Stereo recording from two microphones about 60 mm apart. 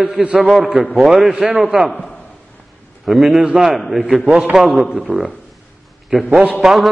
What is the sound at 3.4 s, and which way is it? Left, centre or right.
Speech, centre.